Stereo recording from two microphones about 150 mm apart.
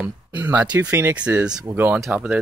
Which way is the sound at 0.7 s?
15° right (ahead or behind).